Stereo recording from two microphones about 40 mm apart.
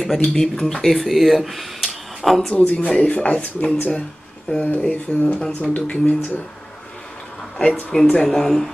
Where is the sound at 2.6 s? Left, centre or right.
Left.